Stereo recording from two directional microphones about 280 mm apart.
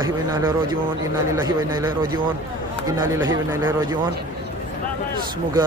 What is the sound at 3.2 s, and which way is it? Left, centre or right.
Speech, centre.